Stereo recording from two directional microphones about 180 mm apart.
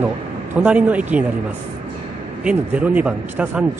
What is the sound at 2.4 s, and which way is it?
Speech, 10° right (ahead or behind).